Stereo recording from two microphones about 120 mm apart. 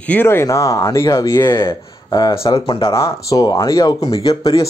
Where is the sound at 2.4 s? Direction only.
50° left (ahead or behind).